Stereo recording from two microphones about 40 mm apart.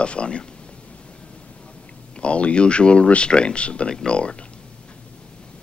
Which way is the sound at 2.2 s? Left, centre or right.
Left.